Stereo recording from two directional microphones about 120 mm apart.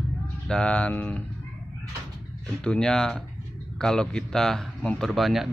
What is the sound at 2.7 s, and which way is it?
Speech, 5° left (ahead or behind).